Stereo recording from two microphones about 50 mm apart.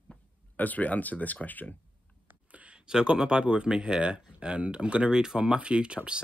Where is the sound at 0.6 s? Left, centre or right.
Left.